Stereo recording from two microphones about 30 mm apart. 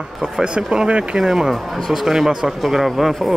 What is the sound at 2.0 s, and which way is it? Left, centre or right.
Speech, centre.